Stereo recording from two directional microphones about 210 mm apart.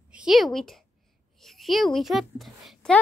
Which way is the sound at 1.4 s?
Centre (ahead or behind).